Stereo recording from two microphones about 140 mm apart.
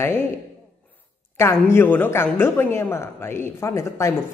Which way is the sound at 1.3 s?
20° left (ahead or behind).